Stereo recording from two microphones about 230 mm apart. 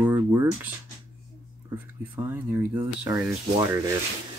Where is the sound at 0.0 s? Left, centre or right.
Centre.